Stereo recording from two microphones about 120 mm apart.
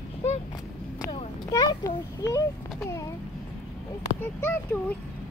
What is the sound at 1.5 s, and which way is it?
Speech, 25° left (ahead or behind).